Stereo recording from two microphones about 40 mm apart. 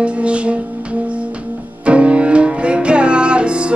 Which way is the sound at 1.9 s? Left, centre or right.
Right.